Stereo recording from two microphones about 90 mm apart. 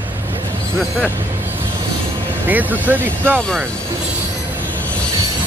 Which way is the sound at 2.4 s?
20° right (ahead or behind).